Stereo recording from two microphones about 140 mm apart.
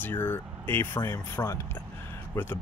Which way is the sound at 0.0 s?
15° left (ahead or behind).